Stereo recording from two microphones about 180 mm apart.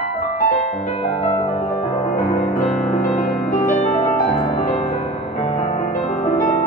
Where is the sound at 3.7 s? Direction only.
40° left (ahead or behind).